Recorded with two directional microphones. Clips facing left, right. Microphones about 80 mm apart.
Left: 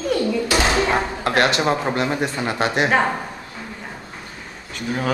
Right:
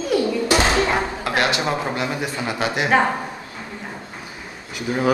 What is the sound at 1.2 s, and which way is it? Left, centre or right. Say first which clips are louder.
Speech: left 4 dB; left.